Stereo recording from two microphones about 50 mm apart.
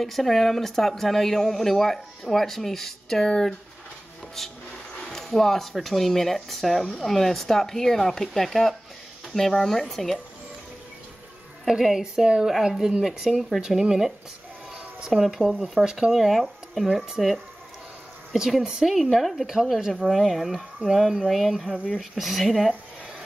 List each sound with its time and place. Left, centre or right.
0.0 s speech: centre
11.6 s a woman's voice: centre
18.3 s a woman's voice: centre
21.5 s speech: centre
22.1 s speech: centre